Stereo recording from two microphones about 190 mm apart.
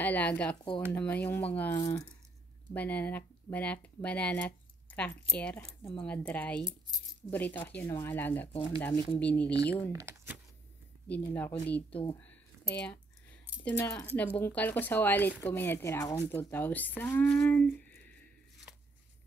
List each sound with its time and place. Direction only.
0.0 s speech: 10° left (ahead or behind)
8.5 s speech: 30° left (ahead or behind)
8.8 s speech: 10° left (ahead or behind)
9.9 s speech: 10° right (ahead or behind)
11.1 s speech: 10° left (ahead or behind)